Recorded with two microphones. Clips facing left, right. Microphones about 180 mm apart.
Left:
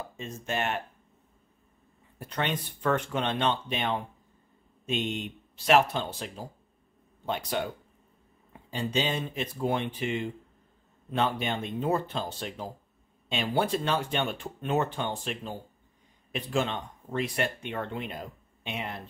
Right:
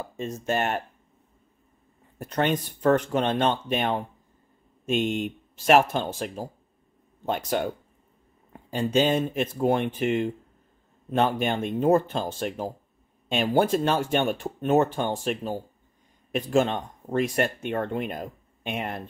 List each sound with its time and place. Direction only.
0.2 s speech: 40° right (ahead or behind)
2.1 s speech: 45° right (ahead or behind)